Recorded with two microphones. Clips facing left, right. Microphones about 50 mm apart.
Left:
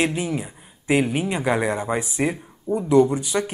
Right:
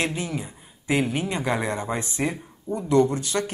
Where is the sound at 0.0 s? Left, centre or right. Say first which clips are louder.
Left 4 dB; centre.